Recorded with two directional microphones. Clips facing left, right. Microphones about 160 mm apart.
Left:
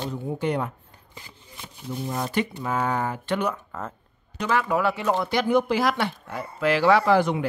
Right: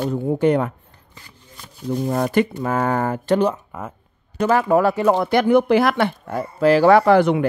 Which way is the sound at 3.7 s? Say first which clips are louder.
Right 2 dB; 10° right (ahead or behind).